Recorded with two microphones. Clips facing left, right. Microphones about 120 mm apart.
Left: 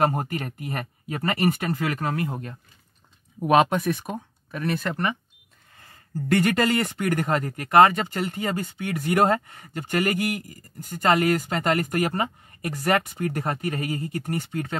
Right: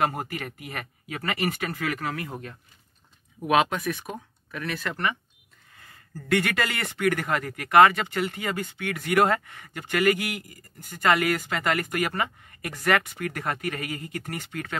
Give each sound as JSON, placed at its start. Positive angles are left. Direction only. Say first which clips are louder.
{"t": 0.0, "sound": "speech", "louder": "left 3 dB", "side_deg": 35}
{"t": 6.3, "sound": "speech", "louder": "left 5 dB", "side_deg": 35}